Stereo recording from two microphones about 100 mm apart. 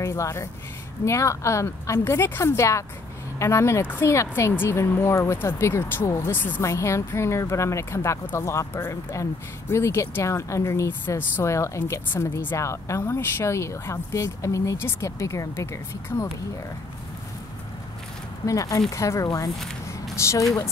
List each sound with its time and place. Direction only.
0.0 s speech: 30° left (ahead or behind)
18.4 s speech: 35° left (ahead or behind)